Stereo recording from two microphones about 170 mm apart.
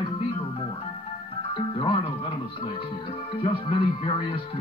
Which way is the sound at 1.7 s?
30° left (ahead or behind).